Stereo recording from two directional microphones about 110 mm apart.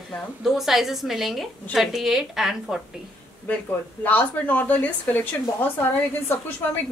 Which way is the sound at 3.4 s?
15° left (ahead or behind).